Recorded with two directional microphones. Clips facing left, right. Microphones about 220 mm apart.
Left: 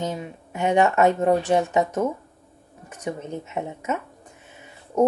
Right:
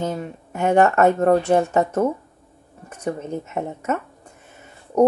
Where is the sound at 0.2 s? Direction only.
50° right (ahead or behind).